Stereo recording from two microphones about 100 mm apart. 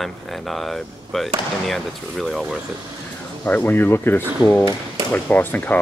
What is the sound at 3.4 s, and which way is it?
Speech, 20° left (ahead or behind).